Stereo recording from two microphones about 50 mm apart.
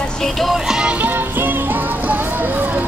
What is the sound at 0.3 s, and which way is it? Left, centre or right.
Music, centre.